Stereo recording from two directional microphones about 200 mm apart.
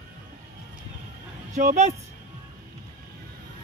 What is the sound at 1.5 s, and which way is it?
Speech, 35° right (ahead or behind).